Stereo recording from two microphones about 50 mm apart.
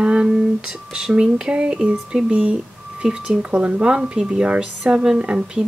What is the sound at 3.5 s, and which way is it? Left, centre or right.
Speech, right.